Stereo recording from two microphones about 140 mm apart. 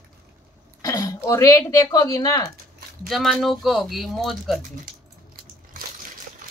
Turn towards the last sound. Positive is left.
turn(degrees=0)  # may be behind; listen again after turning